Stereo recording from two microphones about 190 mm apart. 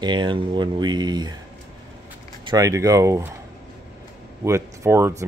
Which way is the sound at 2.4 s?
15° right (ahead or behind).